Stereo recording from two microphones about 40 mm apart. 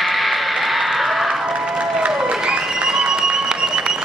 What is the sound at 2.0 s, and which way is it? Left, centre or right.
Applause, right.